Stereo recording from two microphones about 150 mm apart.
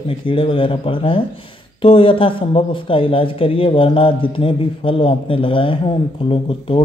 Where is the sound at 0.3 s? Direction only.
35° left (ahead or behind).